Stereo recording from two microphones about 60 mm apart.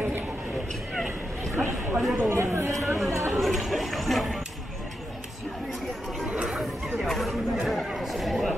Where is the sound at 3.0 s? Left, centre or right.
Right.